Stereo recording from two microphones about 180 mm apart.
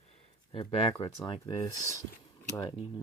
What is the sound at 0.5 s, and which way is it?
Speech, 30° left (ahead or behind).